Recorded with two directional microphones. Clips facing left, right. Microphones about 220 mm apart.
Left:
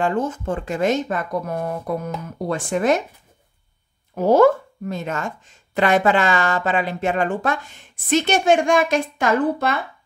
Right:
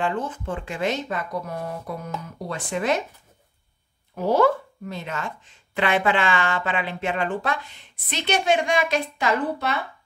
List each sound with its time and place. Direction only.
0.0 s speech: 45° left (ahead or behind)
4.1 s speech: 45° left (ahead or behind)